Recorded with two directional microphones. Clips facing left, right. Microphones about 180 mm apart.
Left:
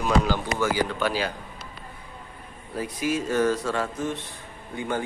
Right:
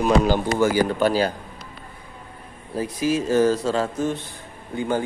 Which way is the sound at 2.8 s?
30° right (ahead or behind).